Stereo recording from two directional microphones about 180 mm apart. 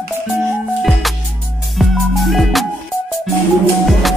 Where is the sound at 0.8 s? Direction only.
Centre (ahead or behind).